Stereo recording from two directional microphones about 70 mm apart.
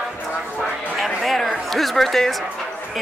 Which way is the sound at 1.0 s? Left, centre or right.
Centre.